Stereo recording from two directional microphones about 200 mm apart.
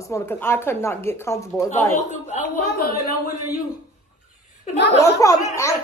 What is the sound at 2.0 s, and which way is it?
Speech, 35° left (ahead or behind).